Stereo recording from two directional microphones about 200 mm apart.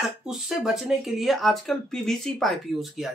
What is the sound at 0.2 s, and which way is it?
Speech, centre (ahead or behind).